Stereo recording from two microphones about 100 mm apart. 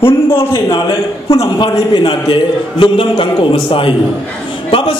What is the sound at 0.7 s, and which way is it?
A man's voice, 55° left (ahead or behind).